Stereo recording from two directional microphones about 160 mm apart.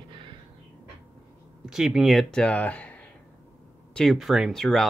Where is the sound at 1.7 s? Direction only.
Centre (ahead or behind).